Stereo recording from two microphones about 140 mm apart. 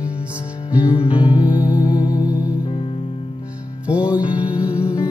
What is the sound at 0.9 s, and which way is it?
Music, 40° left (ahead or behind).